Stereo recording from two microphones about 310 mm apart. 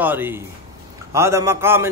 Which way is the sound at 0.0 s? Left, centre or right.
Centre.